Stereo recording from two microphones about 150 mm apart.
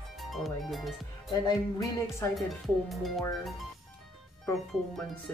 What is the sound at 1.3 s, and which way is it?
Music, 25° left (ahead or behind).